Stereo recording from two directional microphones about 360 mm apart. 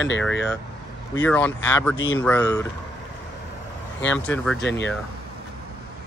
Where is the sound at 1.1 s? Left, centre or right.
Centre.